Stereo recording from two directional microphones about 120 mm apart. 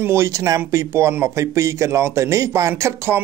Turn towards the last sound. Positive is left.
turn(degrees=-20)  # may be behind; listen again after turning